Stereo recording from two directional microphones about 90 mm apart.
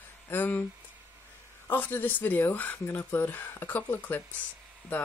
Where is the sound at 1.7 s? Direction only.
20° left (ahead or behind).